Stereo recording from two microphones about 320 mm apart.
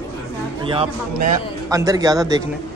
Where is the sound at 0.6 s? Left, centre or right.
Centre.